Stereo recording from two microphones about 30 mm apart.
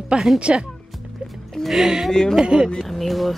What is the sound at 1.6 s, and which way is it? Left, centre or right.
Speech, centre.